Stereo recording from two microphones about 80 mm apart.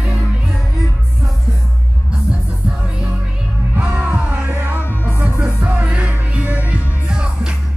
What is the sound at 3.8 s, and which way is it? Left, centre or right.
Music, centre.